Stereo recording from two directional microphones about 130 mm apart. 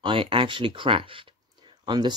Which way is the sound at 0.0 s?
40° right (ahead or behind).